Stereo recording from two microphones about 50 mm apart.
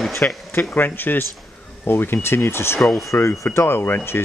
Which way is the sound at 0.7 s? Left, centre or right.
Left.